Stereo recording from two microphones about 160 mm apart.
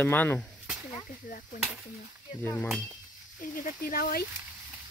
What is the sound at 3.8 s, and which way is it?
Speech, 65° left (ahead or behind).